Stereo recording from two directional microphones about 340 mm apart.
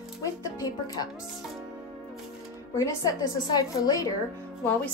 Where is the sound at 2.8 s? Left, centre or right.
Centre.